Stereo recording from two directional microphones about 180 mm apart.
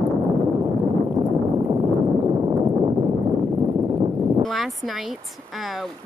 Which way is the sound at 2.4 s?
25° right (ahead or behind).